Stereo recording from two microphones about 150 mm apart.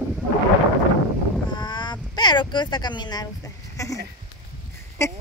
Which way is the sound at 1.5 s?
30° left (ahead or behind).